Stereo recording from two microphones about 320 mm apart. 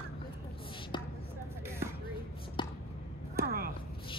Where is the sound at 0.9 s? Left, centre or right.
Centre.